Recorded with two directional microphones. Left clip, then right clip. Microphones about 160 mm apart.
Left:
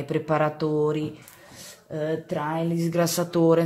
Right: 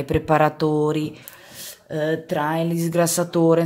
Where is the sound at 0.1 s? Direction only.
30° right (ahead or behind).